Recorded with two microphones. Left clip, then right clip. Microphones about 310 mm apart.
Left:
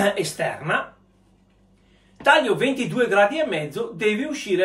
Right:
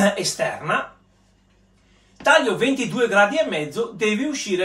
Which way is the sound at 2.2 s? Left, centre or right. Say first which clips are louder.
Right 1 dB; centre.